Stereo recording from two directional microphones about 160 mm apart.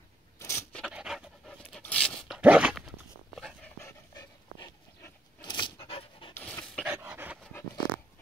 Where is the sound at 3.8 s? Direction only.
20° left (ahead or behind).